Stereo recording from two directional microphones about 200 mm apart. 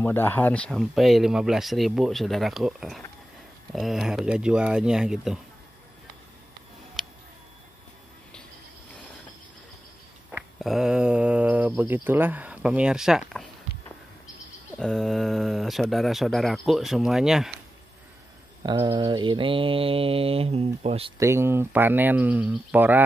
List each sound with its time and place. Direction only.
0.0 s speech: 10° left (ahead or behind)
10.6 s speech: centre (ahead or behind)
14.8 s speech: centre (ahead or behind)
18.6 s mantra: 20° right (ahead or behind)
21.2 s speech: 15° right (ahead or behind)